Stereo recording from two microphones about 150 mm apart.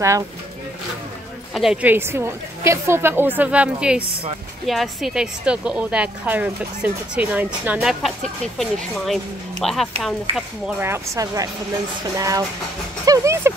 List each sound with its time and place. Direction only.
1.5 s a woman's voice: 5° right (ahead or behind)
10.8 s speech: 20° right (ahead or behind)